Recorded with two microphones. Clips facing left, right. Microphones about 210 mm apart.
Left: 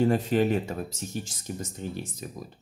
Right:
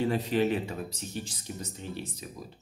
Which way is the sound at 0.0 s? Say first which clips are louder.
Left 4 dB; 45° left (ahead or behind).